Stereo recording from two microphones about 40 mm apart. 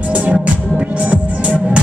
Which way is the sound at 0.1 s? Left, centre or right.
Right.